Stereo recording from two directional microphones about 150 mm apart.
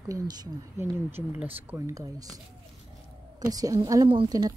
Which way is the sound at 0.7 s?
10° right (ahead or behind).